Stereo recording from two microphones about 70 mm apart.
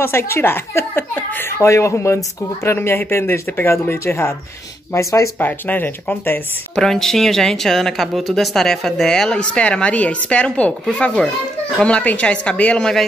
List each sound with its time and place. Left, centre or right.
0.0 s speech: left
1.6 s speech: left
5.4 s speech: left
6.7 s speech: centre